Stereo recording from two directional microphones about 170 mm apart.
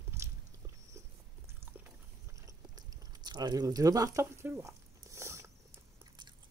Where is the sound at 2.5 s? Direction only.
25° right (ahead or behind).